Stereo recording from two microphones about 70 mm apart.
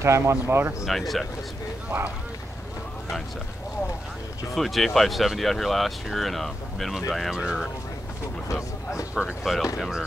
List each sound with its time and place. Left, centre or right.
0.0 s speech: right
0.8 s speech: centre
4.6 s speech: centre
9.1 s speech: centre